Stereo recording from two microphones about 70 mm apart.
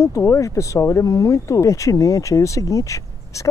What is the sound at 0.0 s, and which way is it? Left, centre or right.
Speech, left.